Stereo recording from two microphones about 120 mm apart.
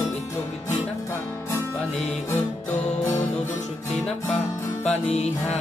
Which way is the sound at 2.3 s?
20° left (ahead or behind).